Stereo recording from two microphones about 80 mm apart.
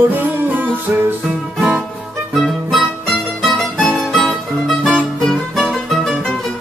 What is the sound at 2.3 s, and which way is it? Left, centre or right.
Music, centre.